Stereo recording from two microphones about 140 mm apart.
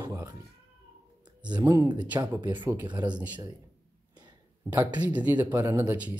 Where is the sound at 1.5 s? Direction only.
30° right (ahead or behind).